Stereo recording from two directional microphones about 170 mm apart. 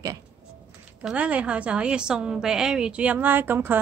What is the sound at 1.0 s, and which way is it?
A woman's voice, 10° right (ahead or behind).